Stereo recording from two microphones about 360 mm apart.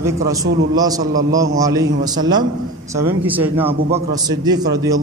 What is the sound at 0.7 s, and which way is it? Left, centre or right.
A man's voice, centre.